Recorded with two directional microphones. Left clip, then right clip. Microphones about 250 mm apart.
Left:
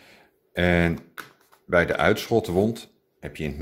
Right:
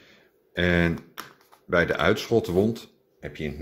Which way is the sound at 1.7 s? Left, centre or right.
Centre.